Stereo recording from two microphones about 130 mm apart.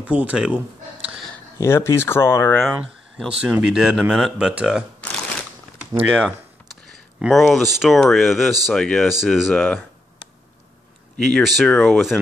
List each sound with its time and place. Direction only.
0.0 s speech: 10° right (ahead or behind)
1.6 s speech: 20° left (ahead or behind)
2.7 s speech: 10° right (ahead or behind)
6.0 s speech: 10° right (ahead or behind)
11.1 s speech: centre (ahead or behind)